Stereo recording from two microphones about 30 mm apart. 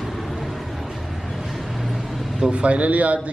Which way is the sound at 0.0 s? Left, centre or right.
Centre.